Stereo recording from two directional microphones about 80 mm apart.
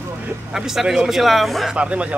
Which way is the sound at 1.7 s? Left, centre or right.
Centre.